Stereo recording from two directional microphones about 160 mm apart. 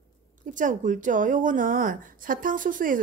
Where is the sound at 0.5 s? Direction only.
50° right (ahead or behind).